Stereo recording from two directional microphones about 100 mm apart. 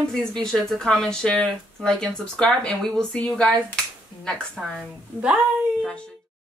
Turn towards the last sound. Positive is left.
turn(degrees=-5)  # may be behind; listen again after turning